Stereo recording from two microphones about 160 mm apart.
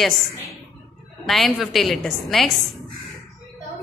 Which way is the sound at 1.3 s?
Centre (ahead or behind).